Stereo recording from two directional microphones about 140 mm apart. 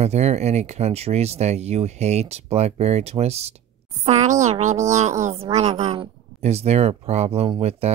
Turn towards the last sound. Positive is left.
turn(degrees=-45)  # may be behind; listen again after turning